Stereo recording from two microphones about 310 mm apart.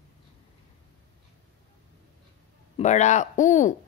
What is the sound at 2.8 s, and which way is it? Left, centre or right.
Speech, left.